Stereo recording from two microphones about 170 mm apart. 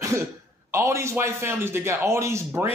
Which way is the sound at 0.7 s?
15° right (ahead or behind).